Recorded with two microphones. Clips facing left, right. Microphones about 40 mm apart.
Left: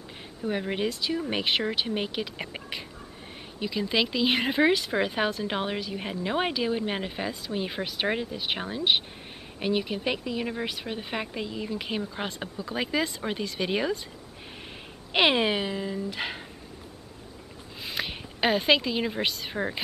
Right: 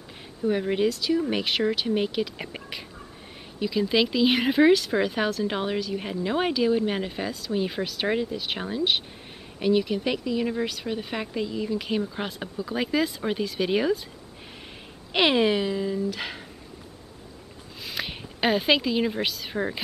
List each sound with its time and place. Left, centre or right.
0.4 s speech: centre
15.1 s speech: centre
17.8 s a woman's voice: centre